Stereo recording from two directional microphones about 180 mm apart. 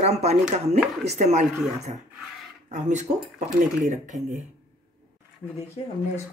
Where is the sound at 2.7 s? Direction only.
40° right (ahead or behind).